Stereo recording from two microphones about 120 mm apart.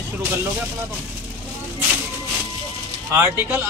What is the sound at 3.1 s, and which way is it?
Speech, 20° right (ahead or behind).